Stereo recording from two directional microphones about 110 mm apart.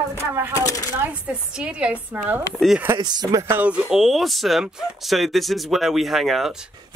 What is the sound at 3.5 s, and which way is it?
Speech, 10° right (ahead or behind).